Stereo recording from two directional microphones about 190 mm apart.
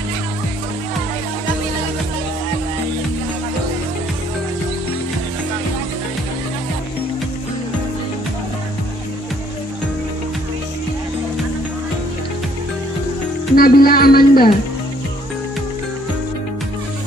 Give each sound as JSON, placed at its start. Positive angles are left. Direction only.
{"t": 13.6, "sound": "speech", "side_deg": 50}